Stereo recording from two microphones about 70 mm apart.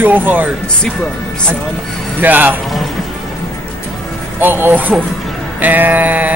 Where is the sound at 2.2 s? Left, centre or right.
Right.